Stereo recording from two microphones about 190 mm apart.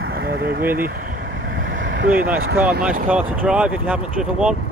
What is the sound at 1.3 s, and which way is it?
Vehicle, 75° right (ahead or behind).